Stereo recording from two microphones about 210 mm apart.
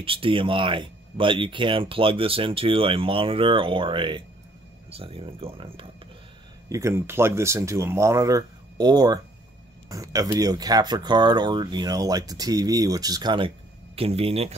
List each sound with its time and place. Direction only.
0.0 s speech: 25° right (ahead or behind)
6.7 s speech: 15° right (ahead or behind); by 14.5 s 30° right (ahead or behind)